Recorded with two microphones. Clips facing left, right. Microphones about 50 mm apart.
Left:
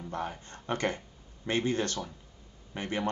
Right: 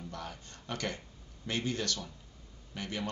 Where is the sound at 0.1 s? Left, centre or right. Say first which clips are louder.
Left 7 dB; left.